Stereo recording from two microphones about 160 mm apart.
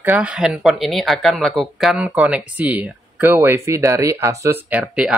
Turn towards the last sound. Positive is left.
turn(degrees=-5)  # may be behind; listen again after turning